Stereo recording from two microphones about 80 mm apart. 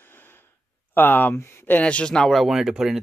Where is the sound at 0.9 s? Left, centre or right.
Left.